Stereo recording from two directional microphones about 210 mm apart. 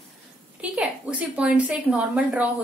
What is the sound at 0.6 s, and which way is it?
A woman's voice, 5° right (ahead or behind).